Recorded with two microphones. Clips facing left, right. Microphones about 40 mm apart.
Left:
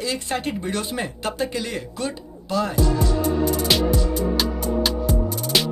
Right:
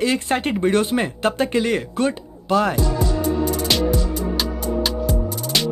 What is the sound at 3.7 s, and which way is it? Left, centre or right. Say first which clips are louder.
Music: even; centre.